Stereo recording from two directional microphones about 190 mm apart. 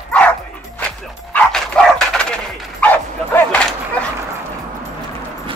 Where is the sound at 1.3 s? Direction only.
5° left (ahead or behind).